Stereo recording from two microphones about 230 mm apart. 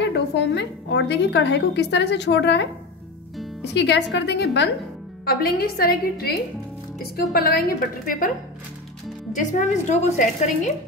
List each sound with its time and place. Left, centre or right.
0.0 s a woman's voice: left
3.7 s a woman's voice: left
9.3 s a woman's voice: left